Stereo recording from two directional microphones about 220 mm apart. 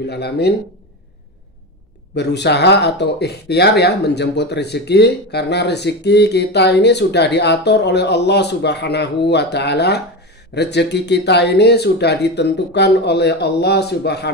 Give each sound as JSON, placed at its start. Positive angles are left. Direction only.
{"t": 0.0, "sound": "speech", "side_deg": 50}
{"t": 2.1, "sound": "speech", "side_deg": 50}